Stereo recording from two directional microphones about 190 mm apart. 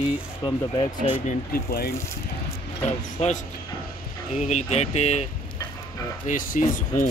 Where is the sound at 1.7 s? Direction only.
55° left (ahead or behind).